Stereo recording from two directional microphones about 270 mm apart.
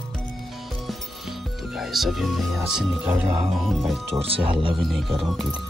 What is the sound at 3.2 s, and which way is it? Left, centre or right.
Speech, centre.